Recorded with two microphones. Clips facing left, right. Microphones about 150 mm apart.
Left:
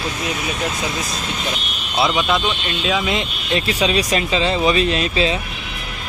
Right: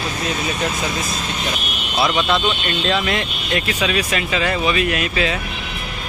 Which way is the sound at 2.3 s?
5° left (ahead or behind).